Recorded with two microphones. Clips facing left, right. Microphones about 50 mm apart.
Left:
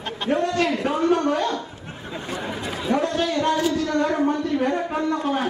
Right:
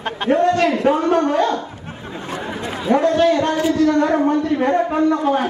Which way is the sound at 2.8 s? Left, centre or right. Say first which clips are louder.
Right 7 dB; right.